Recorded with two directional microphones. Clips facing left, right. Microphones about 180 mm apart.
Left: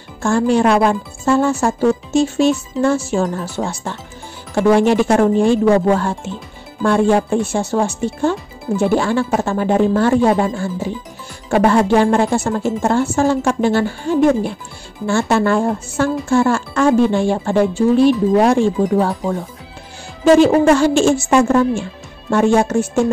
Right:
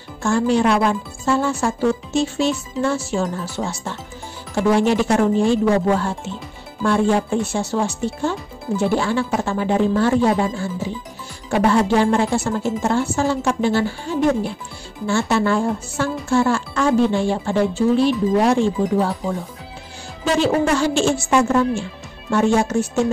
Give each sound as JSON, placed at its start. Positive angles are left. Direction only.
{"t": 0.2, "sound": "speech", "side_deg": 50}
{"t": 20.3, "sound": "speech", "side_deg": 50}